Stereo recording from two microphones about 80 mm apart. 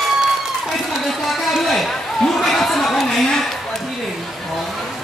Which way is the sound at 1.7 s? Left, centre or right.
Centre.